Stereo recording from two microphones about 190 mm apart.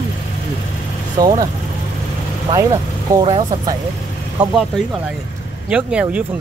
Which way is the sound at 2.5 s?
25° right (ahead or behind).